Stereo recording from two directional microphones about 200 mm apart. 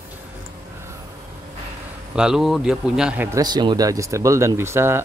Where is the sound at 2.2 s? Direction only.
Centre (ahead or behind).